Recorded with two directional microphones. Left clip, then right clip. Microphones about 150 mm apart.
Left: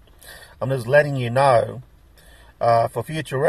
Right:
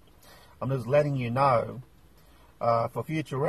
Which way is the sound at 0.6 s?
30° left (ahead or behind).